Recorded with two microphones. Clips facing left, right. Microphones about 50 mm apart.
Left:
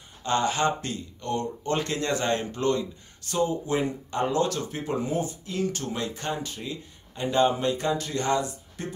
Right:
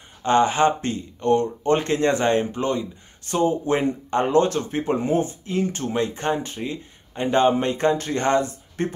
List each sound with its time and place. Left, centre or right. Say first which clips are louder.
0.2 s speech: right 7 dB; right
3.3 s speech: right 5 dB; right